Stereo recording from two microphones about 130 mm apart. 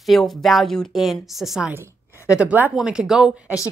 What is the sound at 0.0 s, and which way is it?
Speech, centre (ahead or behind).